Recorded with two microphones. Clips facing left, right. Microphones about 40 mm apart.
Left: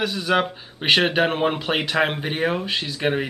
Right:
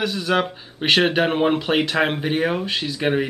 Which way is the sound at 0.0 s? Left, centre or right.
Centre.